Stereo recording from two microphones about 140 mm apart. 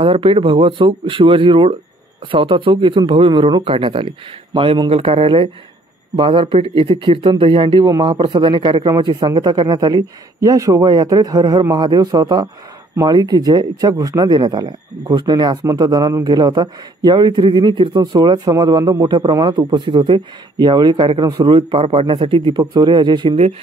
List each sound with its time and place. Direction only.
0.0 s a man's voice: 40° right (ahead or behind)